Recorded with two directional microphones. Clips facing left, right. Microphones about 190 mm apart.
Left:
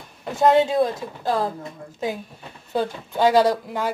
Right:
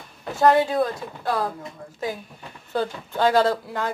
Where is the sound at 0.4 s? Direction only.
20° left (ahead or behind).